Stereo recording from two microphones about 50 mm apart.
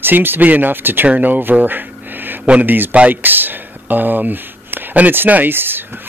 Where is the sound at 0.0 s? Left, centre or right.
Right.